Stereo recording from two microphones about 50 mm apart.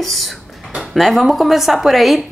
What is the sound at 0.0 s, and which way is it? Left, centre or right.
A woman's voice, centre.